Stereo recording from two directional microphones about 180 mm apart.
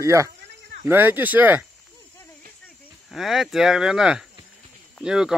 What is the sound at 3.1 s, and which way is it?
Speech, centre (ahead or behind).